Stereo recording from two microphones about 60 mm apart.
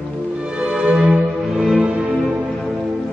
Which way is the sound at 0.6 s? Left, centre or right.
Centre.